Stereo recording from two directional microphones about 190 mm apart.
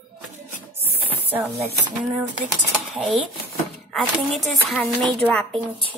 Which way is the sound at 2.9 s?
Centre (ahead or behind).